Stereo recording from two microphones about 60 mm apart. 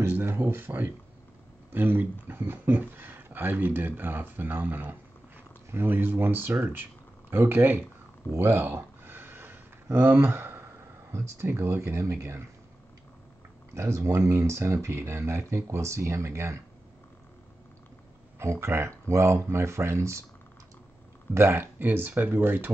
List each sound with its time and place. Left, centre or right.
0.0 s speech: right
8.3 s a sound: right
10.1 s speech: right
11.1 s speech: right
13.7 s speech: right
18.4 s speech: right
21.3 s speech: right